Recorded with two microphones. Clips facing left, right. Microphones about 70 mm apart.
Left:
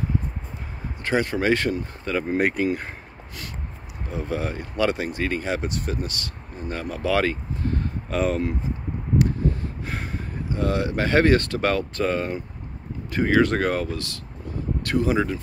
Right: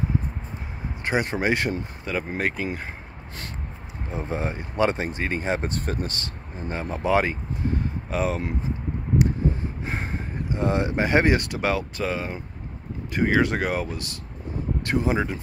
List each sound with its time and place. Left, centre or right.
1.0 s speech: right
2.3 s speech: centre
4.1 s speech: right
5.6 s speech: right
6.7 s speech: right
8.1 s speech: centre
9.8 s speech: right